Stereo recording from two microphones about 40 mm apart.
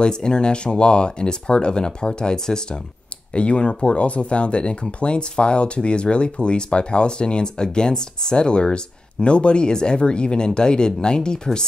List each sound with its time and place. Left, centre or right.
0.0 s speech: left
3.3 s speech: left